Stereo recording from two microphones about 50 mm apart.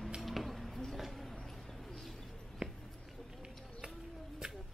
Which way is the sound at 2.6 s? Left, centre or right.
Right.